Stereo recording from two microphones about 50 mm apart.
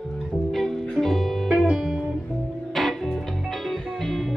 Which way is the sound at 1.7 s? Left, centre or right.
Centre.